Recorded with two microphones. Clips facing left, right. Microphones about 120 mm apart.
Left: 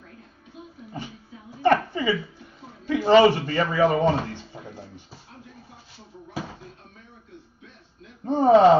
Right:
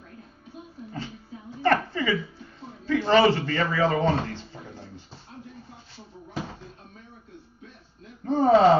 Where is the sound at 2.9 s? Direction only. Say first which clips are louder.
Left 3 dB; 15° left (ahead or behind).